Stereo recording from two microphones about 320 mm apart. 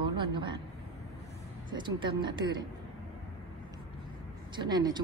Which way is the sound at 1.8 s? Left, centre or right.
Centre.